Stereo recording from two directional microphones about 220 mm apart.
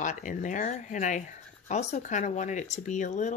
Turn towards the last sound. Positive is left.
turn(degrees=35)  # may be behind; listen again after turning